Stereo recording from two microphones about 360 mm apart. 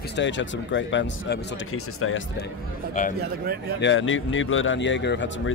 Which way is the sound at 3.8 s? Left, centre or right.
Left.